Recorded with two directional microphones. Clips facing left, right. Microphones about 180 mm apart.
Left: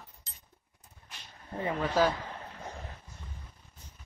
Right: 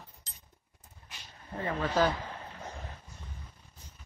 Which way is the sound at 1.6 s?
5° left (ahead or behind).